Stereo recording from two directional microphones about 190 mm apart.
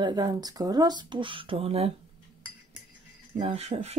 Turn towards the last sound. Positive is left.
turn(degrees=-35)  # may be behind; listen again after turning